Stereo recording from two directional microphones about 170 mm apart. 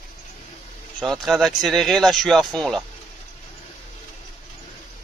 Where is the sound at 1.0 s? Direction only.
Centre (ahead or behind).